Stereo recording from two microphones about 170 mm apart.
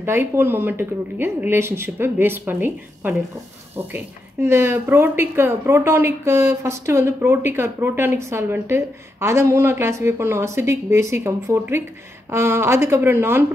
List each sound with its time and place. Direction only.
0.0 s speech: 15° right (ahead or behind)